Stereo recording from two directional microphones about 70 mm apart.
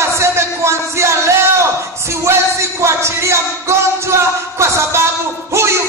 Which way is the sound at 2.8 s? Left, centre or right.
Right.